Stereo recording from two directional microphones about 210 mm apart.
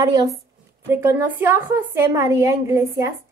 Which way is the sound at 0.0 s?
15° right (ahead or behind).